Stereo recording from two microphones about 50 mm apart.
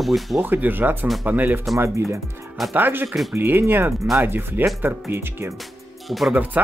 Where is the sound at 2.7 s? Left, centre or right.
Right.